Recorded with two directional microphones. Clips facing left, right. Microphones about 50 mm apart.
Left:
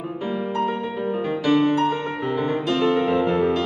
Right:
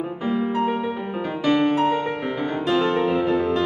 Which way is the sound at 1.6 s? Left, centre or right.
Right.